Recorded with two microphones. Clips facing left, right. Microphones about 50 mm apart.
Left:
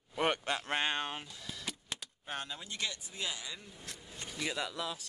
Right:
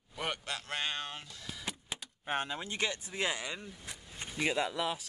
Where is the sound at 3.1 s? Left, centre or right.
Right.